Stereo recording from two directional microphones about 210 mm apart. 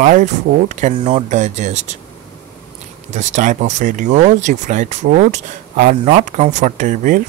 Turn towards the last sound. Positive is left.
turn(degrees=-40)  # may be behind; listen again after turning